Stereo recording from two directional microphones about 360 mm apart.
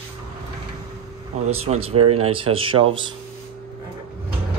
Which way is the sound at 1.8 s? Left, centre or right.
Centre.